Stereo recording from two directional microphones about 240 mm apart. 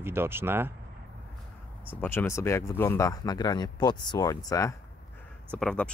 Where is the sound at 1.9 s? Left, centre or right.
Centre.